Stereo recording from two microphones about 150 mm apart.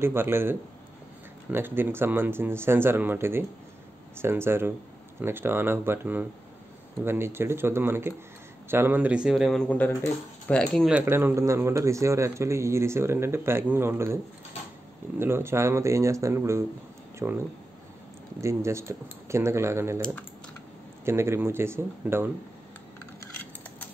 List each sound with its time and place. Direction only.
0.0 s speech: 15° right (ahead or behind); by 10.9 s 5° left (ahead or behind)
10.9 s speech: 15° right (ahead or behind)
18.4 s speech: 20° right (ahead or behind)
21.0 s speech: 15° right (ahead or behind)